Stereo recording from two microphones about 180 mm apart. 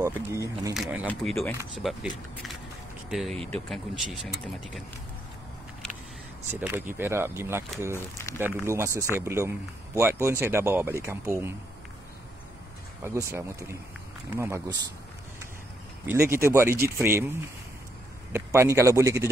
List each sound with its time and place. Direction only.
0.0 s speech: 15° right (ahead or behind)
1.0 s speech: centre (ahead or behind)
3.1 s speech: centre (ahead or behind)
6.5 s speech: 10° right (ahead or behind)
13.0 s speech: 15° right (ahead or behind)
16.1 s speech: 15° right (ahead or behind)